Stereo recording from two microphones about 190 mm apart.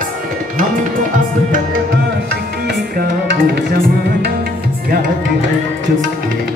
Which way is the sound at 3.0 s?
55° right (ahead or behind).